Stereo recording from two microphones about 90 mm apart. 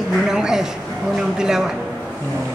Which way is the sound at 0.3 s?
5° right (ahead or behind).